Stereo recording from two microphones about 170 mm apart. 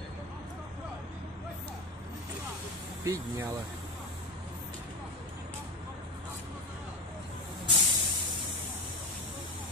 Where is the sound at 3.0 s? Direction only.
20° right (ahead or behind).